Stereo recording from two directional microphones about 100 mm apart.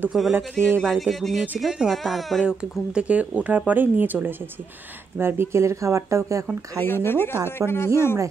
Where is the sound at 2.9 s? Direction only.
10° right (ahead or behind); by 6.4 s 30° right (ahead or behind).